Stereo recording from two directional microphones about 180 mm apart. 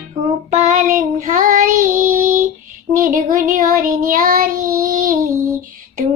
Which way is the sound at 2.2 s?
45° right (ahead or behind).